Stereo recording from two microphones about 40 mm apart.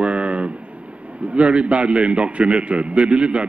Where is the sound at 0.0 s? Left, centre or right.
Right.